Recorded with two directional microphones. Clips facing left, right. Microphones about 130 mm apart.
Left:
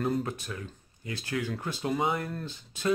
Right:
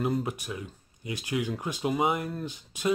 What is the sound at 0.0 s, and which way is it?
Speech, 10° right (ahead or behind).